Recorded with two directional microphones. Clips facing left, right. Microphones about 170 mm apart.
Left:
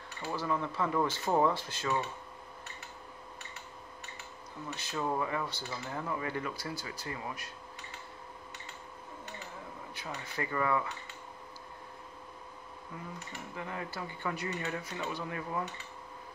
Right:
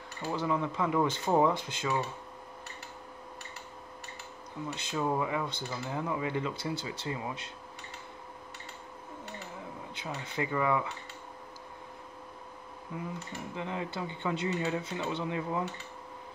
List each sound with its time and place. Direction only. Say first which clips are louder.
0.2 s speech: right 3 dB; 20° right (ahead or behind)
4.7 s speech: right 2 dB; 15° right (ahead or behind)
9.9 s speech: right 3 dB; 20° right (ahead or behind)
13.6 s speech: right 4 dB; 20° right (ahead or behind)